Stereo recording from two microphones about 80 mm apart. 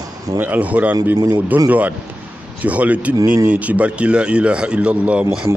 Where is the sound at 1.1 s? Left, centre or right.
Right.